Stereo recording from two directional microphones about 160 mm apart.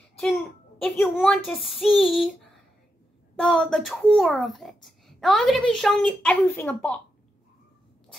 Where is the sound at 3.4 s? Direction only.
Centre (ahead or behind).